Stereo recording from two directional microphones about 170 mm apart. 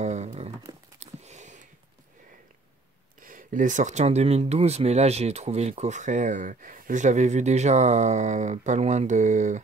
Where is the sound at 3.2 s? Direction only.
50° right (ahead or behind).